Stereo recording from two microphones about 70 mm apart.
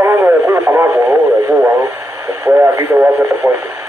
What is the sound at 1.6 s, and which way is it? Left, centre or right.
Speech, right.